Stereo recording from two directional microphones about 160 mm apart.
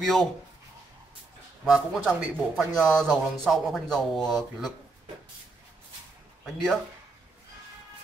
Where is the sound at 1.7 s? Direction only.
Centre (ahead or behind).